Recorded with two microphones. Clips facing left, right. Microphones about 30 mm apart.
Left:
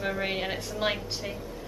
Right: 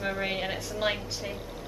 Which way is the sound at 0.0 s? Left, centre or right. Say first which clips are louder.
Left 1 dB; centre.